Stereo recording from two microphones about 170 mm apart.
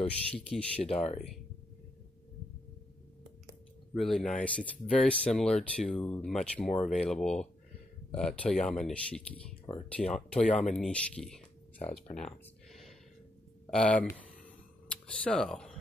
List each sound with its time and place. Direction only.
0.0 s speech: 5° left (ahead or behind)
0.8 s speech: 35° left (ahead or behind)
3.9 s speech: centre (ahead or behind)